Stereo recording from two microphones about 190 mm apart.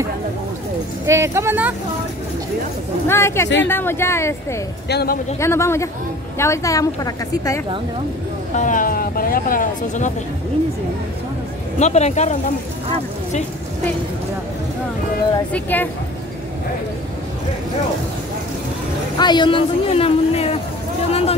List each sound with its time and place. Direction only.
1.0 s speech: 15° right (ahead or behind)
3.1 s speech: 15° left (ahead or behind)
4.8 s speech: 55° left (ahead or behind)
5.4 s speech: 15° left (ahead or behind)
8.5 s speech: 45° left (ahead or behind)
11.8 s speech: 35° left (ahead or behind)
15.5 s speech: 10° left (ahead or behind)
19.1 s speech: 25° left (ahead or behind)